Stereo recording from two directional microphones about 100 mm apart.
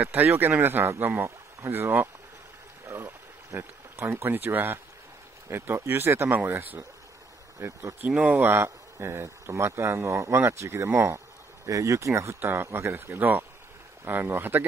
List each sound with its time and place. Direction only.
0.0 s speech: 20° right (ahead or behind)
2.9 s a sound: 30° right (ahead or behind)
5.5 s speech: 25° right (ahead or behind)
8.1 s speech: 15° right (ahead or behind)